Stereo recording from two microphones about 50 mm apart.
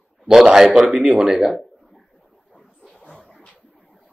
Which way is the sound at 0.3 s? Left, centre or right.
Centre.